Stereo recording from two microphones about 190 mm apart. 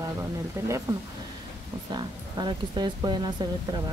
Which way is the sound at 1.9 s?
20° right (ahead or behind).